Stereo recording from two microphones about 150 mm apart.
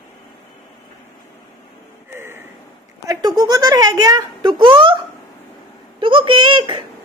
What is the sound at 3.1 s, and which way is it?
Speech, 25° right (ahead or behind).